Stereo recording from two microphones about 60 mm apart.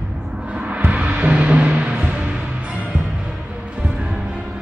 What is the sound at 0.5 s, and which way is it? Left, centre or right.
Music, right.